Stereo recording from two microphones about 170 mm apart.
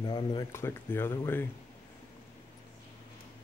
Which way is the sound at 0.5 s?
15° left (ahead or behind).